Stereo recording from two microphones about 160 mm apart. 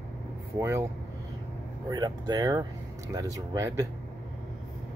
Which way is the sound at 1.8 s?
25° right (ahead or behind).